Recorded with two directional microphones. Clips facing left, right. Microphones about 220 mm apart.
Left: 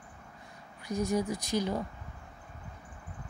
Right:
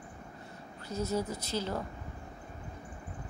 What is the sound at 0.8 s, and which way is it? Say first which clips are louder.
Speech: left 3 dB; 15° left (ahead or behind).